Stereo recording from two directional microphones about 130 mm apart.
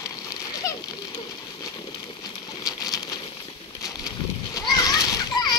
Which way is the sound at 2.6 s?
30° left (ahead or behind).